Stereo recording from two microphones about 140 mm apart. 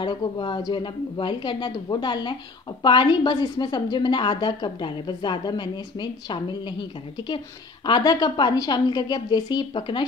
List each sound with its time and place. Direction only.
0.0 s a woman's voice: 35° left (ahead or behind)